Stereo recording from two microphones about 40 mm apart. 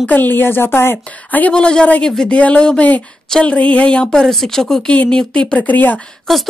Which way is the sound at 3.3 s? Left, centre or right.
Left.